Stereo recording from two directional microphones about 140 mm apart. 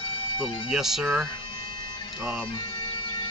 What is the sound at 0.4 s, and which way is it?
Speech, 5° right (ahead or behind).